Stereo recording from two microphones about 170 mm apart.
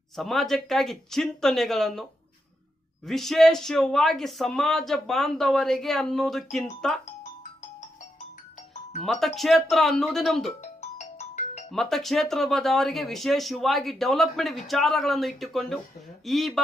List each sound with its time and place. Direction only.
0.1 s speech: centre (ahead or behind)
3.1 s speech: centre (ahead or behind)
9.0 s speech: centre (ahead or behind)
10.6 s ringtone: 40° left (ahead or behind)
11.7 s speech: centre (ahead or behind)